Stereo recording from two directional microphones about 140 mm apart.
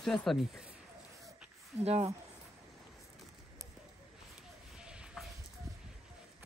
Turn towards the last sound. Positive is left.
turn(degrees=-5)  # may be behind; listen again after turning